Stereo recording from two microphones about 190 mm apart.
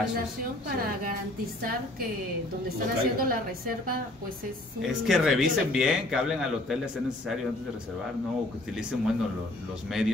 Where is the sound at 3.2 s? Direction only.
50° right (ahead or behind).